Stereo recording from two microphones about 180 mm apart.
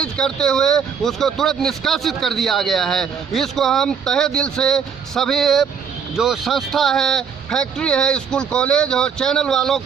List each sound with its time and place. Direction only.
0.0 s a man's voice: 5° left (ahead or behind)